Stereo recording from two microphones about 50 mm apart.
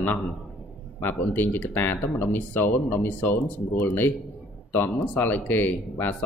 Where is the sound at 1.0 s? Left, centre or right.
Left.